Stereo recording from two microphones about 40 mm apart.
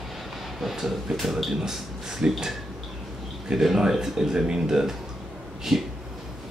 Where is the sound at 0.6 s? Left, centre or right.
Centre.